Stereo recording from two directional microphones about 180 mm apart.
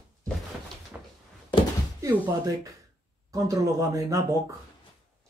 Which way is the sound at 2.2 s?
20° right (ahead or behind).